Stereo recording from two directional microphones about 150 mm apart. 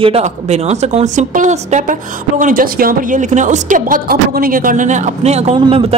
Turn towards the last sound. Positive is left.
turn(degrees=-40)  # may be behind; listen again after turning